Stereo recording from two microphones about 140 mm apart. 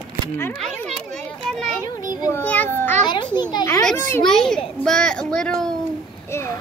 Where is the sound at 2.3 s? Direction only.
10° left (ahead or behind).